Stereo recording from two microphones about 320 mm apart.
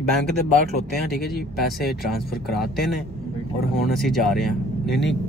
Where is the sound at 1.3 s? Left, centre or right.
Centre.